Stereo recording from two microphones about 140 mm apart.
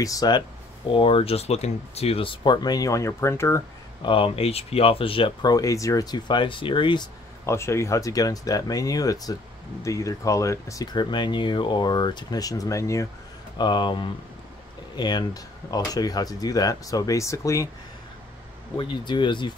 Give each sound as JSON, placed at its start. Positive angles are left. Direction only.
{"t": 0.0, "sound": "speech", "side_deg": 25}
{"t": 0.8, "sound": "speech", "side_deg": 40}
{"t": 4.0, "sound": "speech", "side_deg": 40}
{"t": 7.4, "sound": "speech", "side_deg": 20}
{"t": 13.6, "sound": "speech", "side_deg": 30}
{"t": 18.8, "sound": "speech", "side_deg": 35}